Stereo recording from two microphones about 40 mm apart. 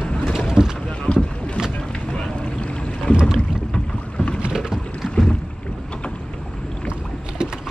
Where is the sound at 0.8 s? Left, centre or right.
Left.